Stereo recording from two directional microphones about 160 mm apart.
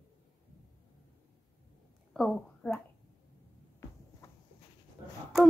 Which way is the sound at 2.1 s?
Centre (ahead or behind).